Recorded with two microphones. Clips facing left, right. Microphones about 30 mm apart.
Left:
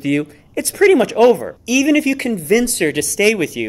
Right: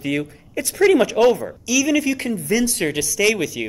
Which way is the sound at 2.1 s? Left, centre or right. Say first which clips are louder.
Left 5 dB; left.